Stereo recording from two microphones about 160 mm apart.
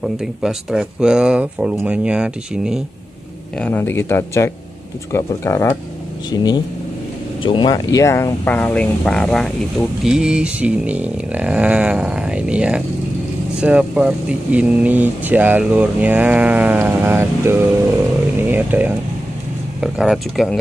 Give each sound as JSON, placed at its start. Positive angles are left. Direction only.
{"t": 0.0, "sound": "speech", "side_deg": -5}
{"t": 3.5, "sound": "speech", "side_deg": 10}
{"t": 18.5, "sound": "a sound", "side_deg": -10}
{"t": 19.8, "sound": "speech", "side_deg": -5}